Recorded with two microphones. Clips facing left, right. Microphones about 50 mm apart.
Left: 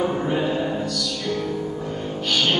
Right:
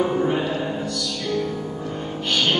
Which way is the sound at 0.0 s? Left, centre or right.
Centre.